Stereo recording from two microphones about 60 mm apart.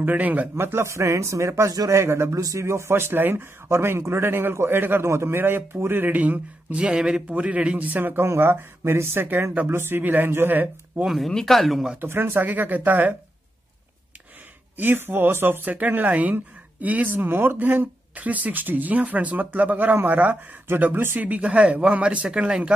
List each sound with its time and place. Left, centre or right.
0.0 s speech: right
0.6 s speech: right
1.7 s speech: right
2.0 s speech: right
2.3 s speech: right
5.0 s speech: right
11.2 s speech: centre
12.0 s speech: right
14.8 s speech: right
20.8 s speech: right
21.3 s speech: centre